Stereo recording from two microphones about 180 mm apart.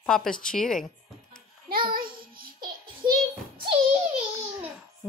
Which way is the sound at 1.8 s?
55° right (ahead or behind).